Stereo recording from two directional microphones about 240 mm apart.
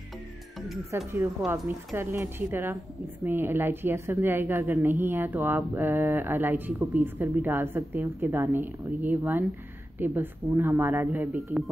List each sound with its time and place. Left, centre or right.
0.9 s speech: centre